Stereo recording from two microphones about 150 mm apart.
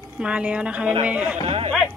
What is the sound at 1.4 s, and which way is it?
Speech, 40° right (ahead or behind).